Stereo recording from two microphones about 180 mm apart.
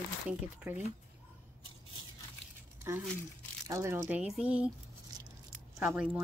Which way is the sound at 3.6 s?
15° right (ahead or behind).